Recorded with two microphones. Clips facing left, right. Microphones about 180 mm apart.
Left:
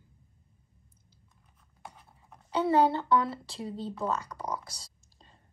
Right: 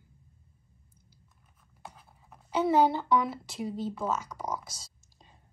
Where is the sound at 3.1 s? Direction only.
15° right (ahead or behind).